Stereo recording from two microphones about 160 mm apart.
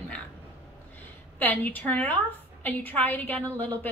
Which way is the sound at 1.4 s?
10° left (ahead or behind).